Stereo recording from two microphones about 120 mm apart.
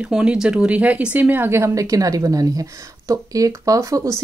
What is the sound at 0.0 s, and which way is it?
Speech, 10° right (ahead or behind).